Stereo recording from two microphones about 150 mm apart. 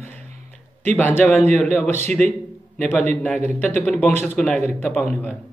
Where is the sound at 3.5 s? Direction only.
10° left (ahead or behind).